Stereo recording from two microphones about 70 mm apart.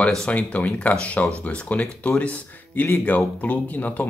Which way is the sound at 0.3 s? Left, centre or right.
Centre.